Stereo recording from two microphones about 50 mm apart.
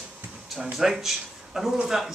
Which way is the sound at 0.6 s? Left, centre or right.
Centre.